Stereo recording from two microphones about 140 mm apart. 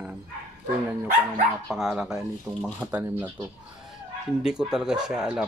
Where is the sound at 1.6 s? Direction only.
5° right (ahead or behind).